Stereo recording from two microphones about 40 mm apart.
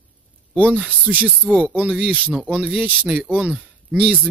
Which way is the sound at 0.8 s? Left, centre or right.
Right.